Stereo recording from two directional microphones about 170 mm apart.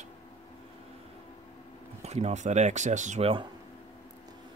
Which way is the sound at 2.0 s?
40° right (ahead or behind).